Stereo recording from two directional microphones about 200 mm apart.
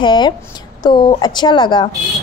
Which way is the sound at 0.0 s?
25° left (ahead or behind).